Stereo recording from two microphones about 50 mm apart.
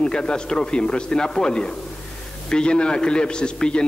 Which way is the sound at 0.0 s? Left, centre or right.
Centre.